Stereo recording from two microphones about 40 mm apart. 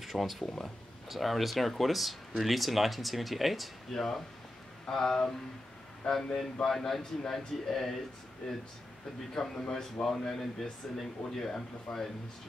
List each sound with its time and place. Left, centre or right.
0.0 s speech: centre
3.9 s speech: centre
6.3 s speech: centre
8.4 s speech: centre